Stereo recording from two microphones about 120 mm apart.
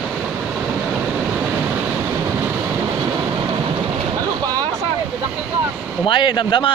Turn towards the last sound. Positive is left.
turn(degrees=40)  # may be behind; listen again after turning